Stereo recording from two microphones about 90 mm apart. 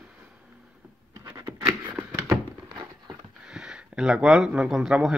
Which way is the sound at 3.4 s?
10° right (ahead or behind).